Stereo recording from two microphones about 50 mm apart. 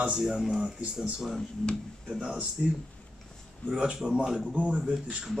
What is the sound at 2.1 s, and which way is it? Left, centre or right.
Speech, centre.